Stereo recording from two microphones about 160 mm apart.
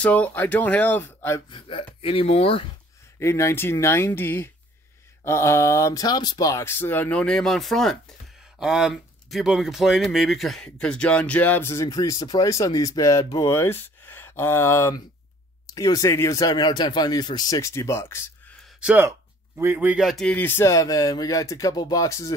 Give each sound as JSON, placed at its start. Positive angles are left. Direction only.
{"t": 0.0, "sound": "speech", "side_deg": 10}
{"t": 1.5, "sound": "speech", "side_deg": 30}
{"t": 3.2, "sound": "speech", "side_deg": 15}
{"t": 18.8, "sound": "speech", "side_deg": -5}